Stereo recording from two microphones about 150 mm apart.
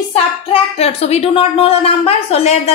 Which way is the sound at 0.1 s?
45° left (ahead or behind).